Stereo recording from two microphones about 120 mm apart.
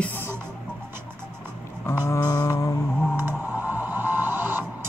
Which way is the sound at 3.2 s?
15° right (ahead or behind).